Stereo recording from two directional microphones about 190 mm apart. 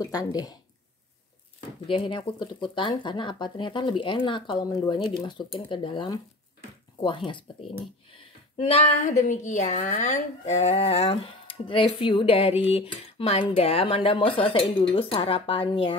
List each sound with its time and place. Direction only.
0.0 s speech: 20° left (ahead or behind)
1.9 s a woman's voice: 25° left (ahead or behind)